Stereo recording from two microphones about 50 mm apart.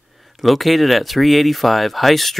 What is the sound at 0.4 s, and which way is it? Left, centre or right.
Speech, centre.